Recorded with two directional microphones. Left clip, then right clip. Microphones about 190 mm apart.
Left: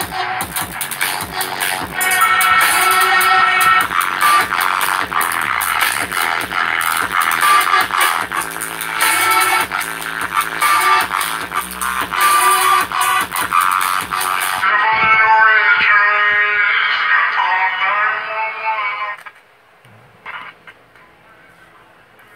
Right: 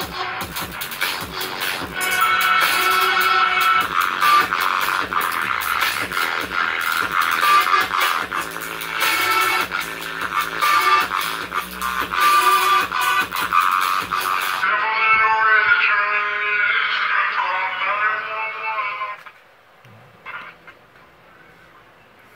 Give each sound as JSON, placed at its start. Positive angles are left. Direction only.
{"t": 0.1, "sound": "music", "side_deg": 25}